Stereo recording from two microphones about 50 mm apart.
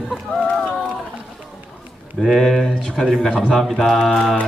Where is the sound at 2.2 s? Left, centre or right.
Centre.